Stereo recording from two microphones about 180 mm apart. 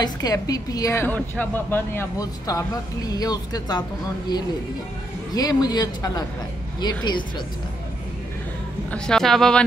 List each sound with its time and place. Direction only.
0.0 s a woman's voice: 20° left (ahead or behind)
5.3 s a woman's voice: 20° left (ahead or behind)
8.9 s a woman's voice: 5° left (ahead or behind)